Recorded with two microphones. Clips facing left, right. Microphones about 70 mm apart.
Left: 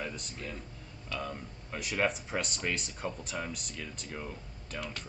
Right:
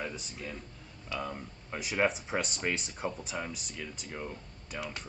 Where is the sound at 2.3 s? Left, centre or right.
Centre.